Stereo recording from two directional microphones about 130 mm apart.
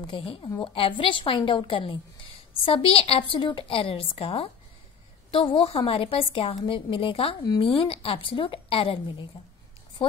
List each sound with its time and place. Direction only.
0.0 s a woman's voice: 40° left (ahead or behind)